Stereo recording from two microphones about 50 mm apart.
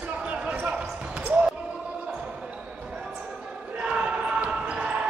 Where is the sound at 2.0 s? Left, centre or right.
Right.